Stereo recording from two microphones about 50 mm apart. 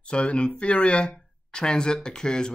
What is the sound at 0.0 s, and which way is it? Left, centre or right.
Speech, left.